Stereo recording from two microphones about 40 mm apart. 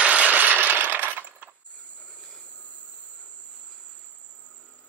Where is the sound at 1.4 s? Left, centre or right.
Right.